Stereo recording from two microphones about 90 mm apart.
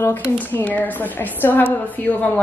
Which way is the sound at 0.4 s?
20° left (ahead or behind).